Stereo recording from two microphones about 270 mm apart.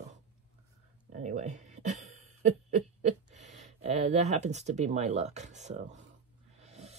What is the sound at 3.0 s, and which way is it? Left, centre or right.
Speech, right.